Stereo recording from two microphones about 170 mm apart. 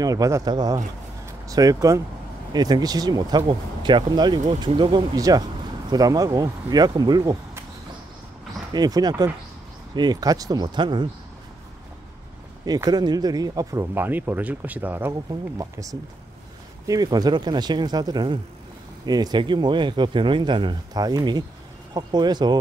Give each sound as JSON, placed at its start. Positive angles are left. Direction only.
{"t": 0.0, "sound": "speech", "side_deg": -20}
{"t": 8.7, "sound": "speech", "side_deg": -25}
{"t": 12.6, "sound": "speech", "side_deg": -25}